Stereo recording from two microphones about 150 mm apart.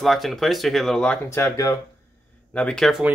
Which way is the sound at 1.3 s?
20° left (ahead or behind).